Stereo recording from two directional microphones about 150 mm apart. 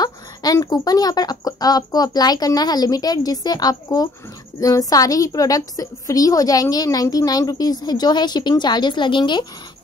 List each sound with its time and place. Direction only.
0.0 s a woman's voice: 25° left (ahead or behind)